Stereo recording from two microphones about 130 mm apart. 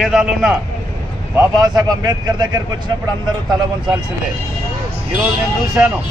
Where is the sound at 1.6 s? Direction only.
30° right (ahead or behind).